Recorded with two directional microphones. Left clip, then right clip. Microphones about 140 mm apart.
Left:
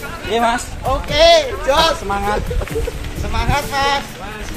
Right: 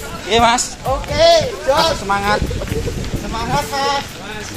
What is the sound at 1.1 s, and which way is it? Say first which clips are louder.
Speech: left 1 dB; 25° left (ahead or behind).